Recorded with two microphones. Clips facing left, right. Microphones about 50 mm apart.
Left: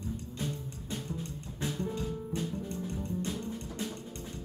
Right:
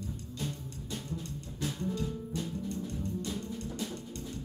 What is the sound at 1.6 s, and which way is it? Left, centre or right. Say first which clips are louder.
Music: even; left.